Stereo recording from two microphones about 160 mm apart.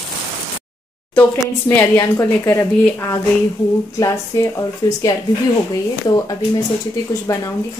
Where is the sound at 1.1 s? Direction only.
20° left (ahead or behind).